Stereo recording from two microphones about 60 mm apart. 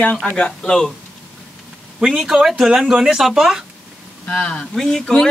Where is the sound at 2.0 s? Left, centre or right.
Centre.